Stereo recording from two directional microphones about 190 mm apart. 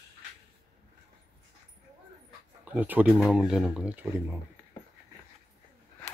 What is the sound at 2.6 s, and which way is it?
Speech, 10° right (ahead or behind).